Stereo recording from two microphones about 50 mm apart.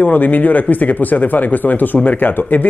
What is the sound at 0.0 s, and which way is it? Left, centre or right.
Speech, left.